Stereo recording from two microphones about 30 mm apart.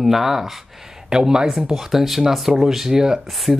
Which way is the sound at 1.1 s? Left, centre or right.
Right.